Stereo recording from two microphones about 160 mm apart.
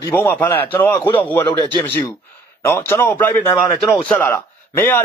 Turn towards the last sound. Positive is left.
turn(degrees=15)  # may be behind; listen again after turning